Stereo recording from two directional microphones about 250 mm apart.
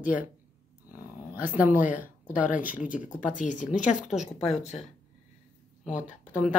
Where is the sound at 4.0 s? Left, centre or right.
Centre.